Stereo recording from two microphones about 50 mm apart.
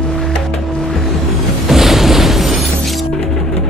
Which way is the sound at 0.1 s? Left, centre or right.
Centre.